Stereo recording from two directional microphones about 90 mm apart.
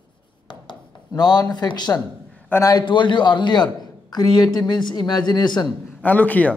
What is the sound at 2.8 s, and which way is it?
A man's voice, 60° left (ahead or behind).